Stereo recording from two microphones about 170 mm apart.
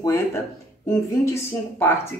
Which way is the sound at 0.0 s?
15° left (ahead or behind).